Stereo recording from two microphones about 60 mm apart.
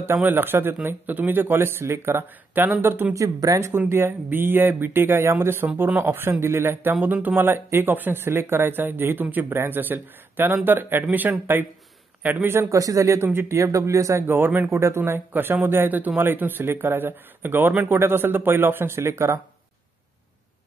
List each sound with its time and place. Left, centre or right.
0.0 s speech: right
3.2 s speech: right
3.6 s speech: right
12.7 s speech: right
13.3 s speech: right
14.2 s speech: right
14.7 s speech: right